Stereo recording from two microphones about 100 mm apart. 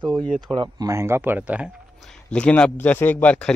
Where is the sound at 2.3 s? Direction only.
10° left (ahead or behind).